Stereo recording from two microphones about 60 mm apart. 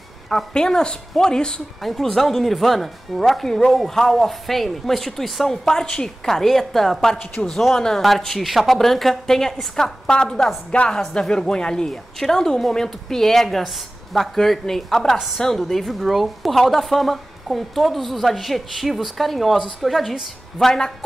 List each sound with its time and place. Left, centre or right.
0.5 s a woman's voice: centre
20.5 s a woman's voice: centre